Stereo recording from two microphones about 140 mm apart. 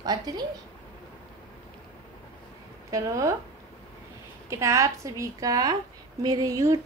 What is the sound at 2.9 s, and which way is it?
Speech, 20° right (ahead or behind).